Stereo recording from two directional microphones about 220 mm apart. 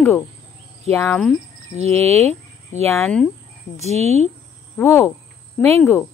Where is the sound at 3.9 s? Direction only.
30° right (ahead or behind).